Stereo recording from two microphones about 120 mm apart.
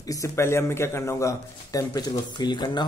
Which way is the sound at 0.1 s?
25° left (ahead or behind).